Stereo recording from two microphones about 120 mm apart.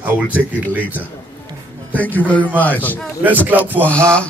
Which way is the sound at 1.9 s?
15° left (ahead or behind).